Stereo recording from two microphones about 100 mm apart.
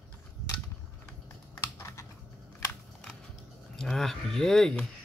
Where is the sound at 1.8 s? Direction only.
30° left (ahead or behind).